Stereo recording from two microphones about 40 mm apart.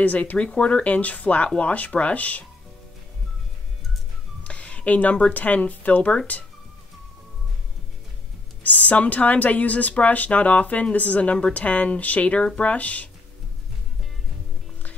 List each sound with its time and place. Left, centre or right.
0.0 s speech: left
0.4 s speech: left
0.9 s speech: left
4.4 s a sound: left
5.3 s speech: left
8.6 s speech: left